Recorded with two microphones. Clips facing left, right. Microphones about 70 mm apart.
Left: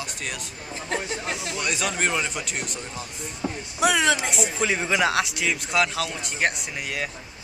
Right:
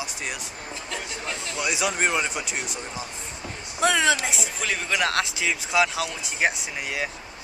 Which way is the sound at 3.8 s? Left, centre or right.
Centre.